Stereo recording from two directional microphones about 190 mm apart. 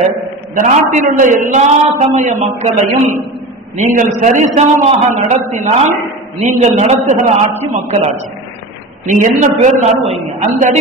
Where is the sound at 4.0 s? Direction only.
40° right (ahead or behind).